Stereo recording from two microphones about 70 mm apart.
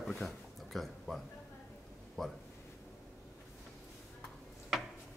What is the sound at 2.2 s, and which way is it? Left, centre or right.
Speech, centre.